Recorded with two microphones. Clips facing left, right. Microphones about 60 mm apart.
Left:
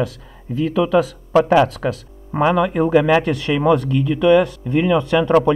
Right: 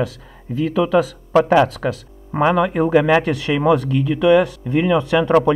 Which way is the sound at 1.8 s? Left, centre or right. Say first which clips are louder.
Even; right.